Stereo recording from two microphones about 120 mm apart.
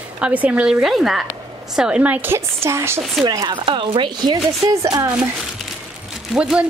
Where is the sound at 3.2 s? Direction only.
35° right (ahead or behind).